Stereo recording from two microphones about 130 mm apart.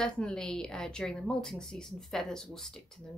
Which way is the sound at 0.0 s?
5° left (ahead or behind).